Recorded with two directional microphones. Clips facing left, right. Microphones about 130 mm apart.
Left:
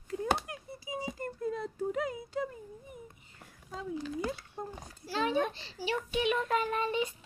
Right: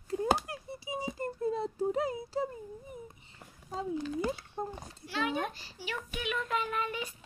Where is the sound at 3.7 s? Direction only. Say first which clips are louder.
Right 3 dB; 30° right (ahead or behind).